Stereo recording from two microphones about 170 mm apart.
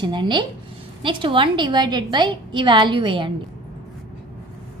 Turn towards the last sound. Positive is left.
turn(degrees=-30)  # may be behind; listen again after turning